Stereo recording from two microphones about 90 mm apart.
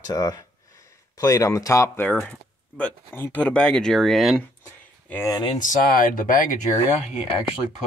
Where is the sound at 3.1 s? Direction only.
20° left (ahead or behind); by 4.4 s centre (ahead or behind).